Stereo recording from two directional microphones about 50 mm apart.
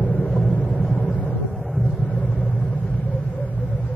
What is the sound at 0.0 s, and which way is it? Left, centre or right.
Vehicle, centre.